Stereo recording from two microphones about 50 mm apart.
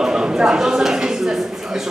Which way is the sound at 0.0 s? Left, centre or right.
Centre.